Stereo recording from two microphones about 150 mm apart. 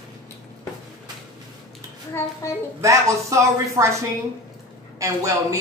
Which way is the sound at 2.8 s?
20° right (ahead or behind).